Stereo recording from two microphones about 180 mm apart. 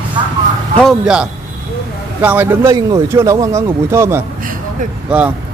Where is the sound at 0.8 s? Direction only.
5° right (ahead or behind).